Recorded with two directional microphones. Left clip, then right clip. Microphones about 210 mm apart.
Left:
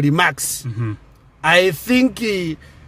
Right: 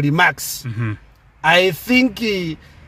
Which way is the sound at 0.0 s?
15° left (ahead or behind).